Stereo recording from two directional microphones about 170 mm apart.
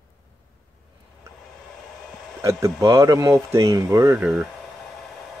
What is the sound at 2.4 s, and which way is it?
Speech, 15° right (ahead or behind).